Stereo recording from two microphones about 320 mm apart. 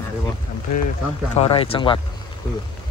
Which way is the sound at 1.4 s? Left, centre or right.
Centre.